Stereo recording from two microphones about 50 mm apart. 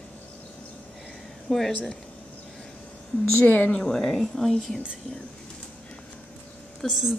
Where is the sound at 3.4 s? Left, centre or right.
Left.